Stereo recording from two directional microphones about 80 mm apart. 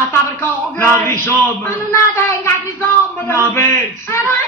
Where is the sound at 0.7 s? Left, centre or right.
Left.